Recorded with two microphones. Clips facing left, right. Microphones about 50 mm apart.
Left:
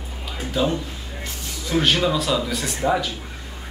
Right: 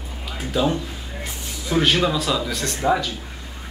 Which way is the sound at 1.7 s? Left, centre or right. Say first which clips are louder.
Right 1 dB; centre.